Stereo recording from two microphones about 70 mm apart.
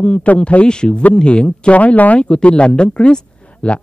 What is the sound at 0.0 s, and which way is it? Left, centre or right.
Speech, centre.